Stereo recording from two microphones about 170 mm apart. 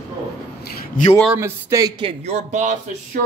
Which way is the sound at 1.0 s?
55° left (ahead or behind).